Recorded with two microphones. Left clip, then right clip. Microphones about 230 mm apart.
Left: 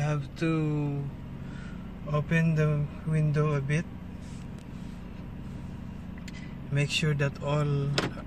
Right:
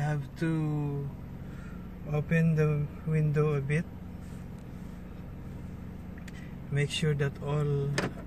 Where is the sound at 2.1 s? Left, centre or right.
Centre.